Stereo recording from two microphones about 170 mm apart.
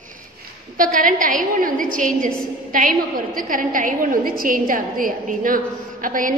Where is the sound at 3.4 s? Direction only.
50° right (ahead or behind).